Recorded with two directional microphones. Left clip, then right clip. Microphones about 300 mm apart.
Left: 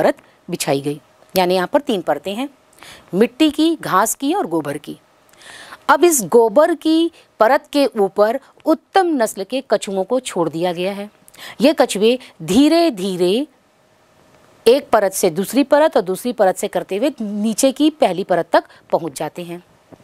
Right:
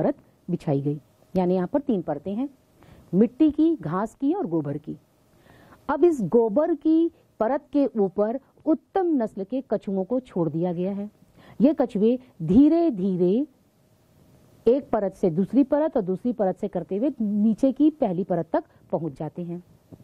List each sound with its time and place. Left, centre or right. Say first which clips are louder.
0.0 s a woman's voice: left 9 dB; centre
5.4 s a sound: left 16 dB; centre
6.2 s a woman's voice: left 9 dB; centre
14.6 s a woman's voice: left 9 dB; centre